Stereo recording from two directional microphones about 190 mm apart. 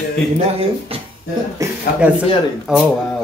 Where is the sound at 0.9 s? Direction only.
30° right (ahead or behind).